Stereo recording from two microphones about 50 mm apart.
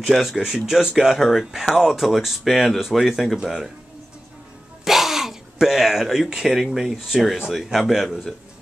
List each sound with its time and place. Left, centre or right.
0.0 s speech: centre
4.8 s speech: centre